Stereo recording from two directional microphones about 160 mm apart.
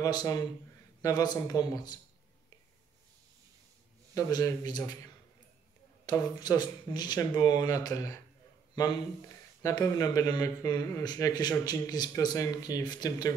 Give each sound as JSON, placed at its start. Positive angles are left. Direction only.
{"t": 0.0, "sound": "speech", "side_deg": 25}
{"t": 4.1, "sound": "speech", "side_deg": 20}
{"t": 6.0, "sound": "speech", "side_deg": 25}
{"t": 9.6, "sound": "speech", "side_deg": 20}